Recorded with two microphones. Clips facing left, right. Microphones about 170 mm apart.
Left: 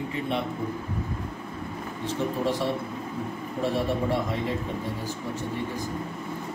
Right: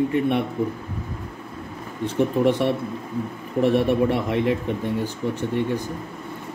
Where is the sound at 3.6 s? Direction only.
65° right (ahead or behind).